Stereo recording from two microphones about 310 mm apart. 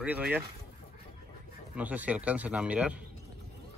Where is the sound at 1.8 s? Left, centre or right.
Centre.